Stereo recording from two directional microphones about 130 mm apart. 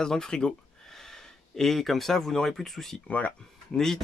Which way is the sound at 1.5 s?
Centre (ahead or behind).